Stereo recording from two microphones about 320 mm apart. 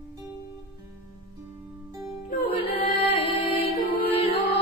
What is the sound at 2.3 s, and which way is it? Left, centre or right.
Music, left.